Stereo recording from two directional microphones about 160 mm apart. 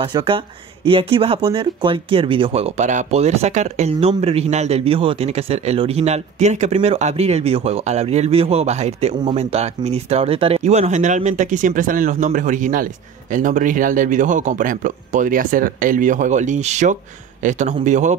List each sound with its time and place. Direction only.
0.0 s speech: 30° right (ahead or behind); by 18.1 s 50° right (ahead or behind)